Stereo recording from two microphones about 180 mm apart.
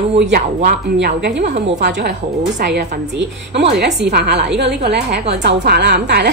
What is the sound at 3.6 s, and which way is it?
A woman's voice, 70° right (ahead or behind).